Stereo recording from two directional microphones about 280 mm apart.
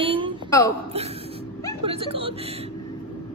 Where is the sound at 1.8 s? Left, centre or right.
Centre.